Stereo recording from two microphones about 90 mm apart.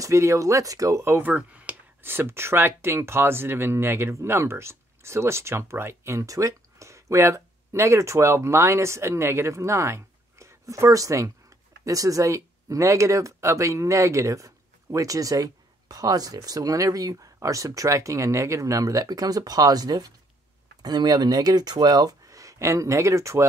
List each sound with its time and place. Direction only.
0.0 s speech: 35° right (ahead or behind)
1.3 s speech: 15° right (ahead or behind); by 23.4 s 35° right (ahead or behind)